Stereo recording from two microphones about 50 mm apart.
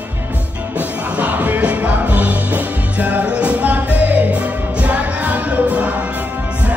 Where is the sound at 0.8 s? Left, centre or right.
Right.